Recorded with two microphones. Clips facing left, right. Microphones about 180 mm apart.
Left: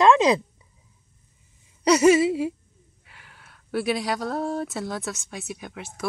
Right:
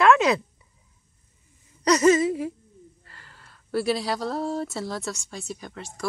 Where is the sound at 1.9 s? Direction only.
10° left (ahead or behind).